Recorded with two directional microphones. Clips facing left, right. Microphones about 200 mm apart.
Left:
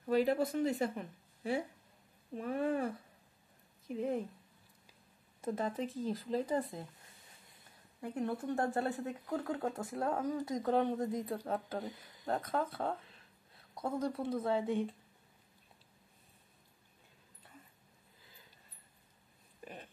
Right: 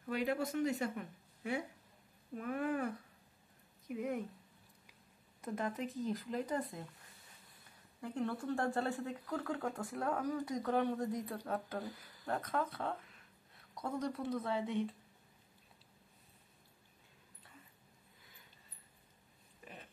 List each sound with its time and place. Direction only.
0.1 s speech: 35° left (ahead or behind)
5.4 s speech: 30° left (ahead or behind)
8.0 s speech: 20° left (ahead or behind)